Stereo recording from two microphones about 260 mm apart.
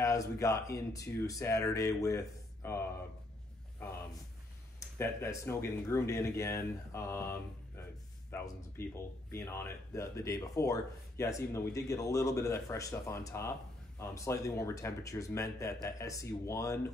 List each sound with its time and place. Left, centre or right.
0.0 s speech: centre
4.7 s speech: centre